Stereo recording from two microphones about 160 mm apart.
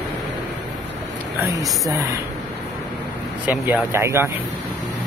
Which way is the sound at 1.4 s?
20° right (ahead or behind).